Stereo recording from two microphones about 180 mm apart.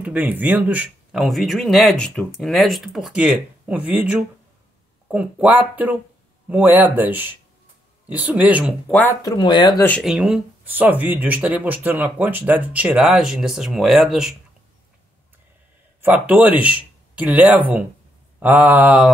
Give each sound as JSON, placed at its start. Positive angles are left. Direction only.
{"t": 0.0, "sound": "speech", "side_deg": -10}
{"t": 9.2, "sound": "speech", "side_deg": 25}
{"t": 10.0, "sound": "speech", "side_deg": -5}
{"t": 16.0, "sound": "speech", "side_deg": -10}